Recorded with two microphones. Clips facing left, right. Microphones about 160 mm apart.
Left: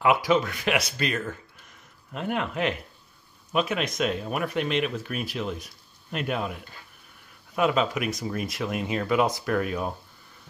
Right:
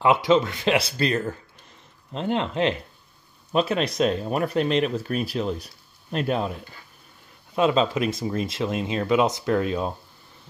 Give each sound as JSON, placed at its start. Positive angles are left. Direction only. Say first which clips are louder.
{"t": 0.0, "sound": "speech", "louder": "right 3 dB", "side_deg": -25}